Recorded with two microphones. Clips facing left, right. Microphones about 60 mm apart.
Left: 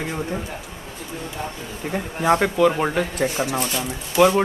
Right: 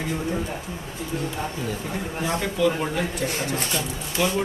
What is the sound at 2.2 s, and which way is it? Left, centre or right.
Speech, left.